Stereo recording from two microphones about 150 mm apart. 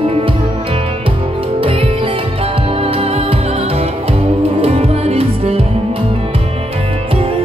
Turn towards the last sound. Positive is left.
turn(degrees=-40)  # may be behind; listen again after turning